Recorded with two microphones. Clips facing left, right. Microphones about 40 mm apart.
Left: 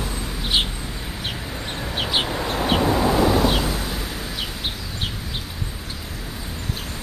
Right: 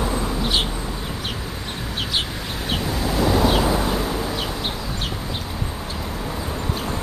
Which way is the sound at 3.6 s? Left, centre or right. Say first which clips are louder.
Right 6 dB; centre.